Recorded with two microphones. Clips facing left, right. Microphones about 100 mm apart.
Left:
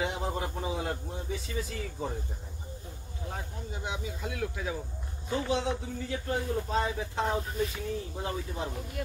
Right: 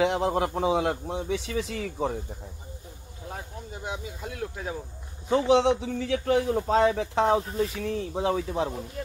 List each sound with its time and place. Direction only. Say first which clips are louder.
0.0 s a man's voice: right 8 dB; 90° right
3.8 s speech: right 1 dB; 40° right (ahead or behind)
5.3 s a man's voice: right 9 dB; 90° right
9.0 s speech: left 1 dB; 25° right (ahead or behind)